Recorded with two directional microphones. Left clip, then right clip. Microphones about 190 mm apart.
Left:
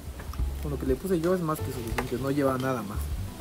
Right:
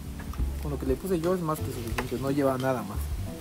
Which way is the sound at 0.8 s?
Centre (ahead or behind).